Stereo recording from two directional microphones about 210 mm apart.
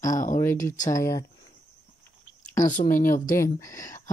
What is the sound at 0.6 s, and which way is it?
Speech, 15° left (ahead or behind).